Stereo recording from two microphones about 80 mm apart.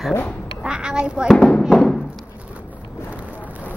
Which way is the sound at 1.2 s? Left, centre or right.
Centre.